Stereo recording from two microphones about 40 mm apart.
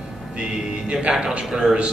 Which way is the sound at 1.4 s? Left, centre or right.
Centre.